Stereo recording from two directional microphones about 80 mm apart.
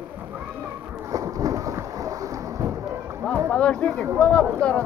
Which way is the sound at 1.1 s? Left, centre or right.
Right.